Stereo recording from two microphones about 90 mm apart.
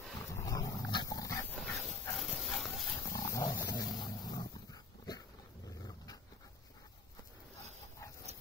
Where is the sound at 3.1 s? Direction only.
35° left (ahead or behind).